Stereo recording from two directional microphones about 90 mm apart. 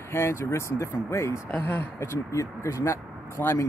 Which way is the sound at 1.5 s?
15° left (ahead or behind).